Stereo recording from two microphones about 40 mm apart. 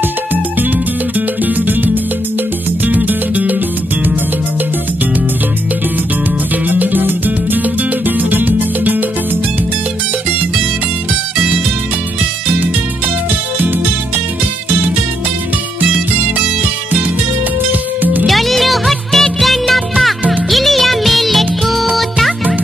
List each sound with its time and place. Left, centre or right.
1.4 s music: right
2.9 s music: right
6.7 s music: right
15.8 s music: right
17.6 s music: right
18.2 s music: centre